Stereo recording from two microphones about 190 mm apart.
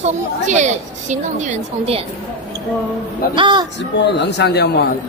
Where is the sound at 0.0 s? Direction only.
40° right (ahead or behind).